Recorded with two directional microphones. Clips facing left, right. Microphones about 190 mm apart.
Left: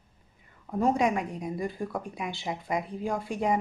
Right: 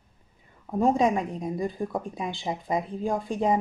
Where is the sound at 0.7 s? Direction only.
20° right (ahead or behind).